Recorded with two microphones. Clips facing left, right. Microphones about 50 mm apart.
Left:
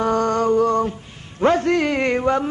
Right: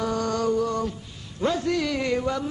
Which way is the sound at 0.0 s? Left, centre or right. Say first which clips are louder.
Left 6 dB; left.